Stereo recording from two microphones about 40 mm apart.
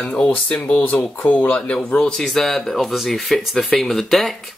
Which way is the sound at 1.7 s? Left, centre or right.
Left.